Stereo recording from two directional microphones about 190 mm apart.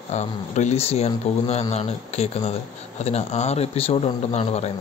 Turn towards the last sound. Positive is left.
turn(degrees=35)  # may be behind; listen again after turning